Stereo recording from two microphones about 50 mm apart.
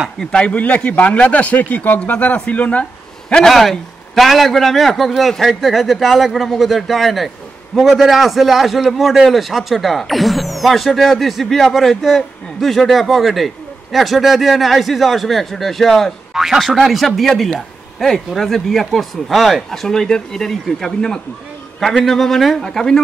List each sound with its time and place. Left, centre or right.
0.2 s a man's voice: centre
3.4 s a man's voice: centre
16.3 s a man's voice: centre